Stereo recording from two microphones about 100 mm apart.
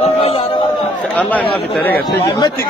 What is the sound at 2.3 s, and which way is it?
Speech, 40° left (ahead or behind).